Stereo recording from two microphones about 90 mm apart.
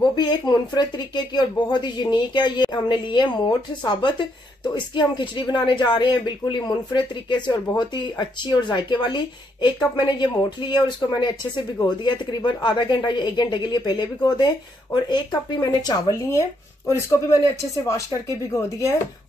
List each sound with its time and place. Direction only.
0.1 s speech: 55° left (ahead or behind); by 18.9 s 35° left (ahead or behind)